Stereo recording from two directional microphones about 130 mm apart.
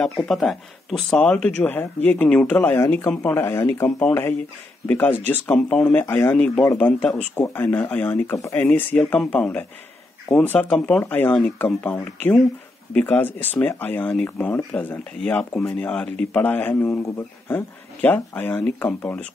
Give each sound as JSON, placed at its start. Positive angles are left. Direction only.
{"t": 0.0, "sound": "speech", "side_deg": 5}